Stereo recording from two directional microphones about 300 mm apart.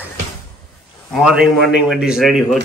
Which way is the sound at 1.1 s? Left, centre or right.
Centre.